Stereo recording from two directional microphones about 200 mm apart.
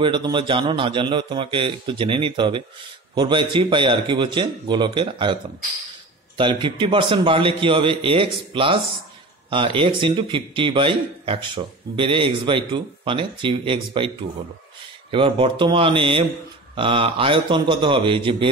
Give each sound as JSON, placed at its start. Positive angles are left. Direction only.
{"t": 0.0, "sound": "a man's voice", "side_deg": -25}